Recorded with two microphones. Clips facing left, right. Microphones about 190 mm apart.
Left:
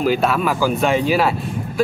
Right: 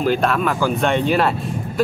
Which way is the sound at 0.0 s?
5° left (ahead or behind).